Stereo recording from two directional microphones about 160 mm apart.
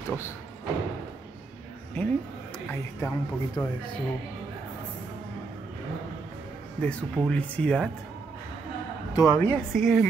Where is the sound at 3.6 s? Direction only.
15° left (ahead or behind).